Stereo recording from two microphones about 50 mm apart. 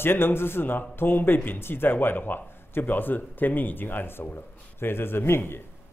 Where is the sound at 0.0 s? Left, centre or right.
Left.